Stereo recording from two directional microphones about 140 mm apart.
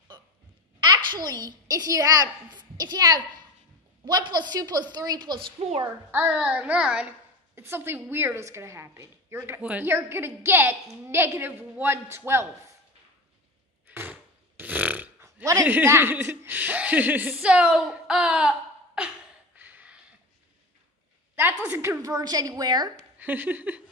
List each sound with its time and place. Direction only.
0.7 s a woman's voice: 30° right (ahead or behind)
5.6 s a woman's voice: 45° right (ahead or behind)
6.1 s a child's voice: 10° right (ahead or behind)
13.8 s a sound: 15° right (ahead or behind)
14.6 s burping: 10° right (ahead or behind)
15.7 s a child's voice: 15° right (ahead or behind)
19.5 s a sound: 15° right (ahead or behind)
21.6 s a woman's voice: 20° right (ahead or behind)
23.1 s a child's voice: 15° right (ahead or behind)